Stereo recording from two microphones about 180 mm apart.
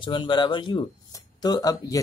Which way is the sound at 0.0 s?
25° left (ahead or behind).